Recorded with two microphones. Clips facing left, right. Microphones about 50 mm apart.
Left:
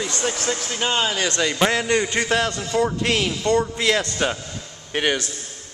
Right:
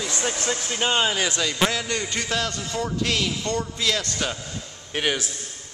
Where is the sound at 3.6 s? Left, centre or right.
Left.